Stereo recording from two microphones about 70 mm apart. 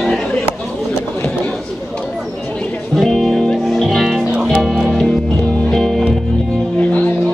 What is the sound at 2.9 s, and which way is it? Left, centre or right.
Music, centre.